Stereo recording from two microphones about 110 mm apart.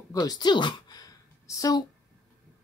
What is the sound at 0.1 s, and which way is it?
Speech, 35° left (ahead or behind).